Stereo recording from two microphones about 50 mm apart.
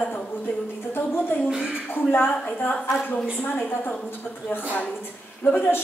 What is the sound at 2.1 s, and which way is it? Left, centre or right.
A woman's voice, left.